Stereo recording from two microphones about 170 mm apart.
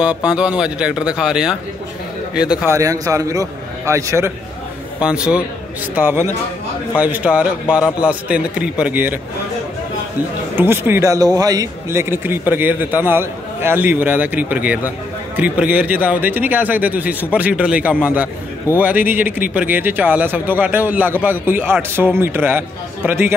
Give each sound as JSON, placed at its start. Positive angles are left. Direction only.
{"t": 0.0, "sound": "speech", "side_deg": -5}
{"t": 2.7, "sound": "a man's voice", "side_deg": -20}
{"t": 5.0, "sound": "a man's voice", "side_deg": -5}
{"t": 10.5, "sound": "a man's voice", "side_deg": -10}